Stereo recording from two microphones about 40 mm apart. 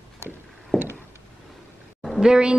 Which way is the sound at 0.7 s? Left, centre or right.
Centre.